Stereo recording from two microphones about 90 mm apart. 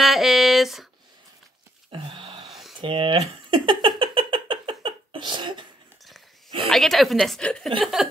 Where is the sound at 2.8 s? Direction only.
70° right (ahead or behind).